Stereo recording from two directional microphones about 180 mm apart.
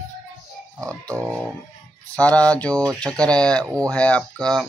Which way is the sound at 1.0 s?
20° right (ahead or behind).